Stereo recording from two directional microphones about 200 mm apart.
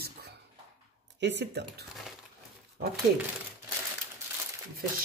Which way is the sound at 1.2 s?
60° right (ahead or behind).